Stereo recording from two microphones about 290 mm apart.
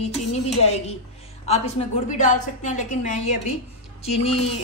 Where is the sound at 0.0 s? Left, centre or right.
Left.